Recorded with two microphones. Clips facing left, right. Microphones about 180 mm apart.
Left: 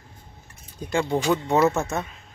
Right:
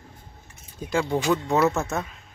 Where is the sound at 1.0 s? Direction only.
25° left (ahead or behind).